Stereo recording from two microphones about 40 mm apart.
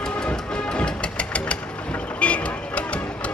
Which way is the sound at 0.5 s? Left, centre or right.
Left.